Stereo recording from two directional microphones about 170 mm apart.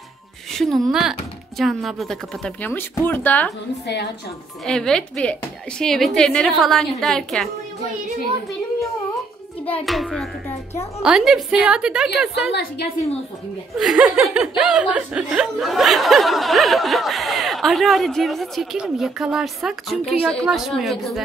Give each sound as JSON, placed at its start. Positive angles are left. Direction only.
{"t": 0.5, "sound": "speech", "side_deg": 0}
{"t": 3.8, "sound": "a woman's voice", "side_deg": 80}
{"t": 4.6, "sound": "speech", "side_deg": 5}
{"t": 9.8, "sound": "speech", "side_deg": 0}
{"t": 13.7, "sound": "speech", "side_deg": -5}